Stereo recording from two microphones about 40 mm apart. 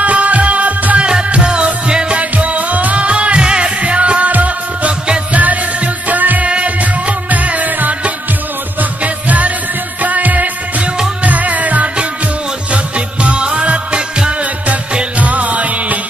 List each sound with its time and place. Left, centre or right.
0.0 s music: right
2.3 s music: right
15.1 s music: right